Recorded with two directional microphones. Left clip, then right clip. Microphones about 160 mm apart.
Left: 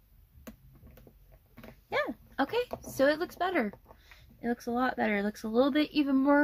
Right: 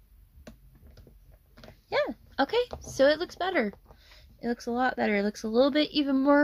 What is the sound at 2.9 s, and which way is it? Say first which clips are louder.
Speech: right 4 dB; 35° right (ahead or behind).